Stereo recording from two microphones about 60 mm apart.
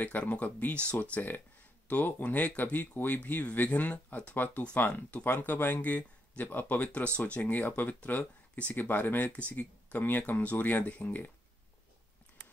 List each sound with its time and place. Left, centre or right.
0.0 s speech: left
9.3 s speech: left